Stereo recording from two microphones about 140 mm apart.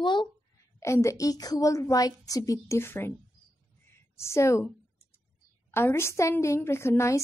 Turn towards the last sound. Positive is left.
turn(degrees=20)  # may be behind; listen again after turning